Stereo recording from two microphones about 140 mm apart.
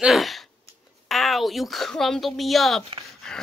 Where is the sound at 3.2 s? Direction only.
5° left (ahead or behind).